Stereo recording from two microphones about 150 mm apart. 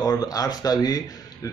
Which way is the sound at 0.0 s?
25° left (ahead or behind).